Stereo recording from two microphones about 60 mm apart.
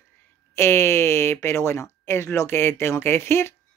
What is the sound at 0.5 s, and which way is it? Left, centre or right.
Speech, left.